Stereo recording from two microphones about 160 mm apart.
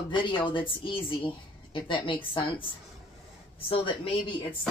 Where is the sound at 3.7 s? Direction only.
35° left (ahead or behind).